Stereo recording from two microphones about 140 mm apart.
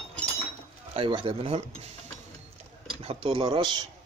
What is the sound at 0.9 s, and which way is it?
Speech, 40° right (ahead or behind).